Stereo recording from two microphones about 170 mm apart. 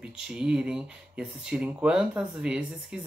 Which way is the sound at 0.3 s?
5° right (ahead or behind).